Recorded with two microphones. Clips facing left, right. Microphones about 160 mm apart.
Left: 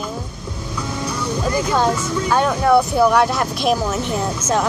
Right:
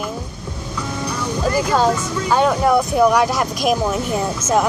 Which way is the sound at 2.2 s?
10° right (ahead or behind).